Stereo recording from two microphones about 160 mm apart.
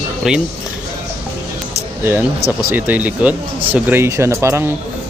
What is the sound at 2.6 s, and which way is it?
Speech, 10° right (ahead or behind).